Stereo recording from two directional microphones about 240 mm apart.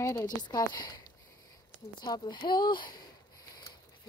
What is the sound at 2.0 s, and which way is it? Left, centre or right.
Speech, centre.